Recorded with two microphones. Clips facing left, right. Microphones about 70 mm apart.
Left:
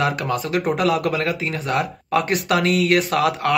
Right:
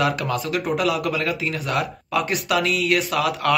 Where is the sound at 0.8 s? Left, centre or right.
Left.